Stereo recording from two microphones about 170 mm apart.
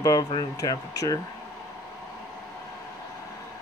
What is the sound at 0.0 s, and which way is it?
Speech, 20° left (ahead or behind).